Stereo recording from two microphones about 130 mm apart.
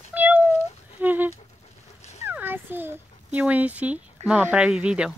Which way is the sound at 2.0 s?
60° left (ahead or behind).